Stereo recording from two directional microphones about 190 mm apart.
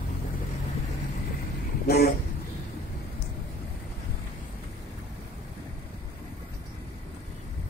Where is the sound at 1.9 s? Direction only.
55° left (ahead or behind).